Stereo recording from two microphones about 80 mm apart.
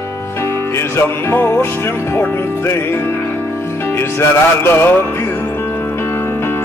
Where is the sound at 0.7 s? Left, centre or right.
Left.